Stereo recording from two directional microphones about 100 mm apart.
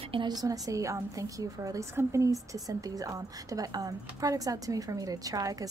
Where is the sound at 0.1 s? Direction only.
45° right (ahead or behind).